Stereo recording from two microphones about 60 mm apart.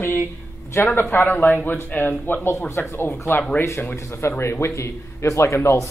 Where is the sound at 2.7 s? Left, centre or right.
Left.